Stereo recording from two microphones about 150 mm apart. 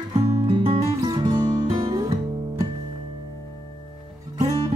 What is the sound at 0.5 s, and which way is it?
Music, 30° right (ahead or behind).